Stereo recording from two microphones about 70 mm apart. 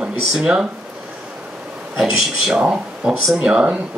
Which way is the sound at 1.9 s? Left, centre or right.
Centre.